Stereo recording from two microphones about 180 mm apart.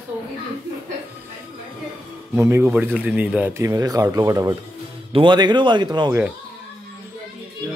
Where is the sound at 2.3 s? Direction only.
15° right (ahead or behind).